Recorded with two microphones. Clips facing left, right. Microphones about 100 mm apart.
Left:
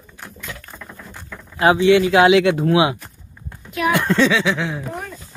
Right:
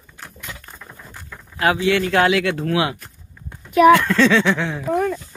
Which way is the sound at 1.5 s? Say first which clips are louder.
Left 5 dB; 25° left (ahead or behind).